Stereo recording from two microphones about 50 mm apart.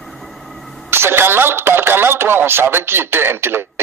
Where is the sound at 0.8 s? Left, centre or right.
Right.